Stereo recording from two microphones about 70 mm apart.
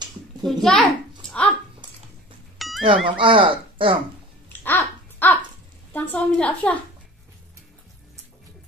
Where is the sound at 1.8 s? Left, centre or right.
Right.